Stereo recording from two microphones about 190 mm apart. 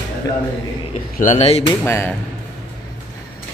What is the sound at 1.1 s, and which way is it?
Speech, 35° left (ahead or behind).